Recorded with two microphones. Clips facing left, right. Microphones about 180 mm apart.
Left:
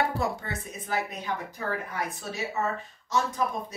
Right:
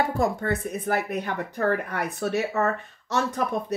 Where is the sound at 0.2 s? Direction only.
55° right (ahead or behind).